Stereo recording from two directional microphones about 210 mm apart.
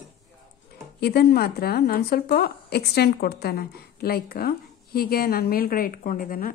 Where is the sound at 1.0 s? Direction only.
50° left (ahead or behind).